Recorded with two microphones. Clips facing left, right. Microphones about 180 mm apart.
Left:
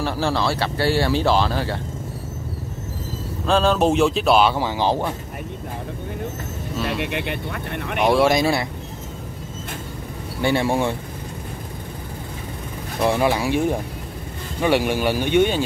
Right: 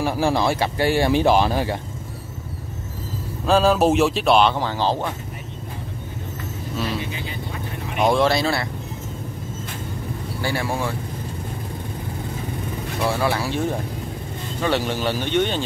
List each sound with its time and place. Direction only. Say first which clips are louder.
0.0 s speech: right 2 dB; 15° right (ahead or behind)
3.4 s speech: right 1 dB; 5° right (ahead or behind); by 5.1 s 15° left (ahead or behind)
6.9 s speech: left 4 dB; 65° left (ahead or behind)
8.0 s speech: left 1 dB; 5° left (ahead or behind)
8.3 s speech: left 2 dB; 15° left (ahead or behind)
10.4 s speech: left 6 dB; 25° left (ahead or behind)
13.0 s speech: left 3 dB; 20° left (ahead or behind)